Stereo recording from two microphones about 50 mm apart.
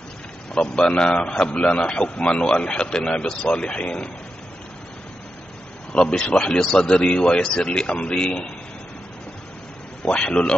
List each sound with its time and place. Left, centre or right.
0.6 s a man's voice: centre
1.3 s a man's voice: centre
5.9 s speech: centre
6.2 s a man's voice: left
10.0 s a man's voice: left